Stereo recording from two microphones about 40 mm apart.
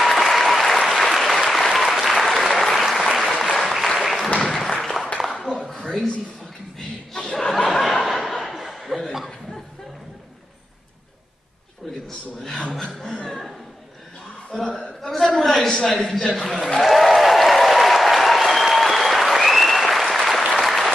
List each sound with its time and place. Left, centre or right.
0.0 s applause: centre
4.6 s a sound: centre
7.3 s laughter: centre
8.7 s chuckle: centre
12.4 s chuckle: centre
14.5 s a sound: centre
16.8 s applause: centre